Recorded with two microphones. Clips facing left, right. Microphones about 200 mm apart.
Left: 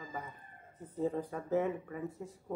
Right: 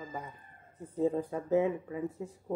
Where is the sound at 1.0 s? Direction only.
15° right (ahead or behind).